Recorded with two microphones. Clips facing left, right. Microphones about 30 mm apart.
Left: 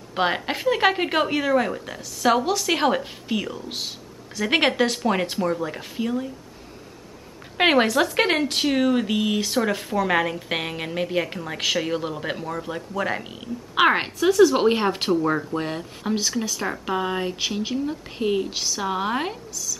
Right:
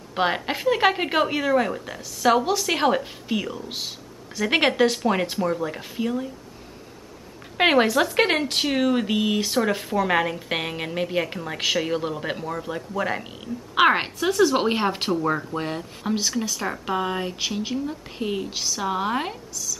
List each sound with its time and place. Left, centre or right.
0.1 s a woman's voice: centre
7.5 s a woman's voice: centre